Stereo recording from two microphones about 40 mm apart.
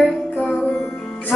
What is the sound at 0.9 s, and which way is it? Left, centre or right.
Music, centre.